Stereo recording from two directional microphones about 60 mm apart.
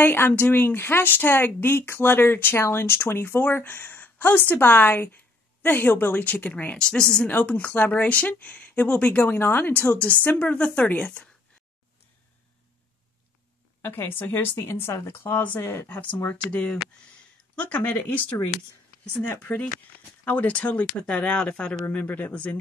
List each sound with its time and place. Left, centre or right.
0.0 s speech: left; by 7.2 s centre
7.2 s speech: left
13.9 s speech: left
15.4 s speech: left
19.2 s speech: left